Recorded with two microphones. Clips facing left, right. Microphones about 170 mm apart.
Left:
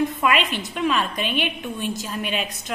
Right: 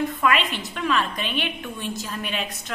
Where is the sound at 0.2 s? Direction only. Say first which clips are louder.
Left 1 dB; 15° left (ahead or behind).